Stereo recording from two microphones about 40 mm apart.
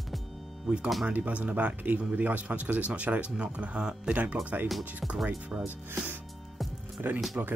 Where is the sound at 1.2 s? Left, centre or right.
Right.